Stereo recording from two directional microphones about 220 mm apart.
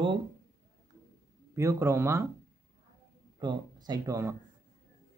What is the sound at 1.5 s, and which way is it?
Speech, 15° right (ahead or behind).